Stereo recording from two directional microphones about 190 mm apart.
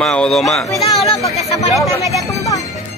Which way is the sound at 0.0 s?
5° left (ahead or behind).